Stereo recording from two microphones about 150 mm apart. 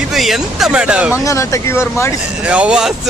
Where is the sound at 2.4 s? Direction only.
10° right (ahead or behind).